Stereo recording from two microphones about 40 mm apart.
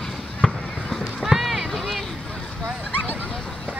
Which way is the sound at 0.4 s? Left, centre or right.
Left.